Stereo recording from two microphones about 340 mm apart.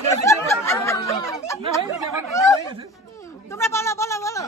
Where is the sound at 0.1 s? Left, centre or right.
Centre.